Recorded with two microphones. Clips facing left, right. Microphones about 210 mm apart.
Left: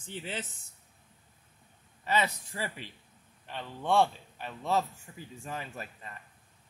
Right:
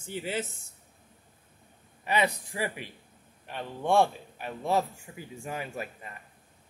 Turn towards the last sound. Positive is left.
turn(degrees=-10)  # may be behind; listen again after turning